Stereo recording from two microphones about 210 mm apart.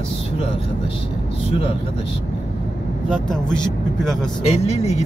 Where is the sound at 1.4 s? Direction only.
25° left (ahead or behind).